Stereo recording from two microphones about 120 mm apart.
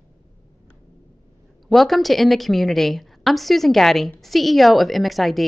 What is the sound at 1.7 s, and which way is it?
A woman's voice, centre (ahead or behind).